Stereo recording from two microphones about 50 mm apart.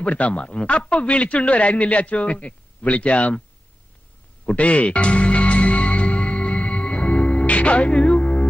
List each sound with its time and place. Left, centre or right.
0.0 s a man's voice: left
4.5 s music: left